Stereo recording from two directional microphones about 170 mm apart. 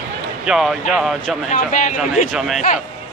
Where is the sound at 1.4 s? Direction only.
50° left (ahead or behind).